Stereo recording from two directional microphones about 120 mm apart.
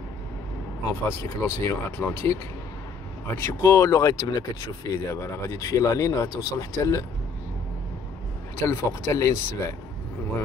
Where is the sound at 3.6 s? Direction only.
25° left (ahead or behind).